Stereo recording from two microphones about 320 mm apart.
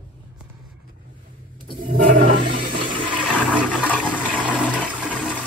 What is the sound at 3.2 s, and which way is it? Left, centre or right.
Toilet flush, centre.